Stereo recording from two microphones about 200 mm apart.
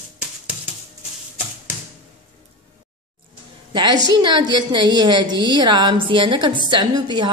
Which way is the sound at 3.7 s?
25° right (ahead or behind).